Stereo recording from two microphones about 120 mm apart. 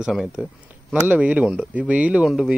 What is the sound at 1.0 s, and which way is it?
Speech, 15° right (ahead or behind).